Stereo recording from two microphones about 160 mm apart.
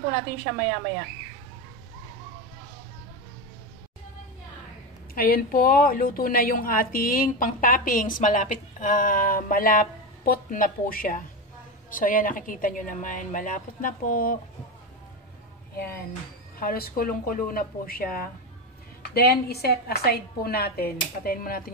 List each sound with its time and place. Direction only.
5.1 s a woman's voice: 65° left (ahead or behind)
16.1 s a woman's voice: 65° left (ahead or behind)
19.1 s a woman's voice: 80° left